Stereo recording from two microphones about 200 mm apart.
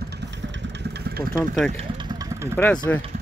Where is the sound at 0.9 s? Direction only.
50° right (ahead or behind).